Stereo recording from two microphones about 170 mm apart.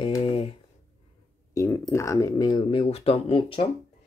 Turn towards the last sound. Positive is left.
turn(degrees=30)  # may be behind; listen again after turning